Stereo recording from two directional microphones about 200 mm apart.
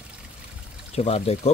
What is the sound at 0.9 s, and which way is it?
Speech, 30° left (ahead or behind).